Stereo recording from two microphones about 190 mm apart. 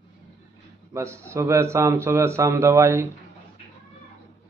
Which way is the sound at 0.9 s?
15° right (ahead or behind).